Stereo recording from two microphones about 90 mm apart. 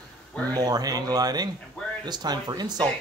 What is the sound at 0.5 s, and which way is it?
Speech, 45° right (ahead or behind).